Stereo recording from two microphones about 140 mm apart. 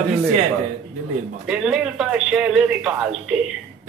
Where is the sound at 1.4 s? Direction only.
5° right (ahead or behind).